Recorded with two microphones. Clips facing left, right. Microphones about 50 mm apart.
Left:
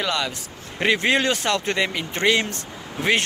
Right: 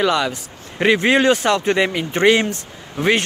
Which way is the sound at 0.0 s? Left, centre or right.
Centre.